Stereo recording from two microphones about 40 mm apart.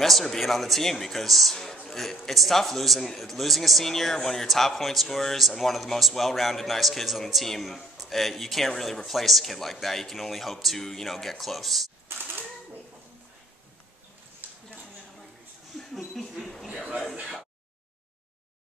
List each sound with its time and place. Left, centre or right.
0.0 s a man's voice: centre
12.1 s typewriter: right
15.8 s a sound: centre